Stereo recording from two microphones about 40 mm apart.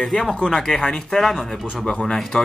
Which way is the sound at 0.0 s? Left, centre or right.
Centre.